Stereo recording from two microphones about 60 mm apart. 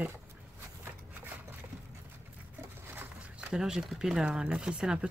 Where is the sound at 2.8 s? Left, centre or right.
Right.